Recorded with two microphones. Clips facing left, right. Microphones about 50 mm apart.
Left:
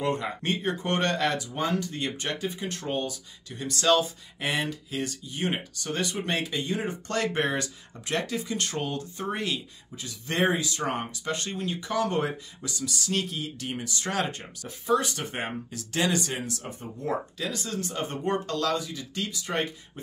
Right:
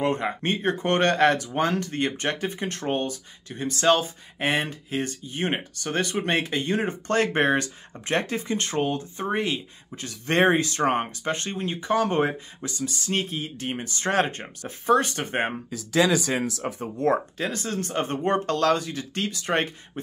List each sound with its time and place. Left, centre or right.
0.0 s speech: right
9.9 s speech: right
16.8 s speech: right
17.4 s speech: right